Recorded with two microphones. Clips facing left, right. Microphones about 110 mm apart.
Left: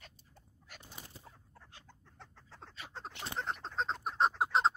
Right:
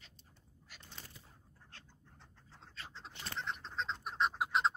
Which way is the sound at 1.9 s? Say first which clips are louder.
Left 6 dB; 75° left (ahead or behind).